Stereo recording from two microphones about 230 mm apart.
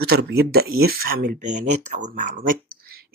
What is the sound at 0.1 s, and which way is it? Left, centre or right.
Speech, right.